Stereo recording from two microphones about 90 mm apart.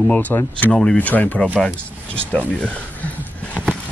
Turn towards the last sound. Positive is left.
turn(degrees=15)  # may be behind; listen again after turning